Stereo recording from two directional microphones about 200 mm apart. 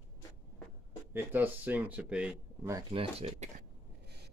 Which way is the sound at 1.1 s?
10° right (ahead or behind).